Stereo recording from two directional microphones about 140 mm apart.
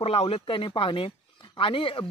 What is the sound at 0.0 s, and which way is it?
A man's voice, 45° left (ahead or behind).